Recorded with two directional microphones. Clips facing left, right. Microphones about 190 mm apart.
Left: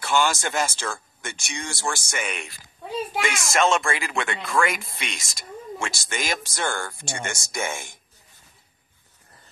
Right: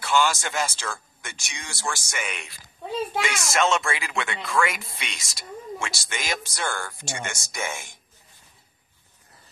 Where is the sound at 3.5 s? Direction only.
50° left (ahead or behind).